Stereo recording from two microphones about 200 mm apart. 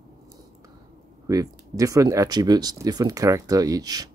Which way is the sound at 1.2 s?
15° right (ahead or behind).